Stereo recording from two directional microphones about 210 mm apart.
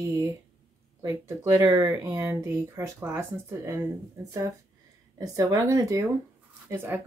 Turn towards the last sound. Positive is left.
turn(degrees=-10)  # may be behind; listen again after turning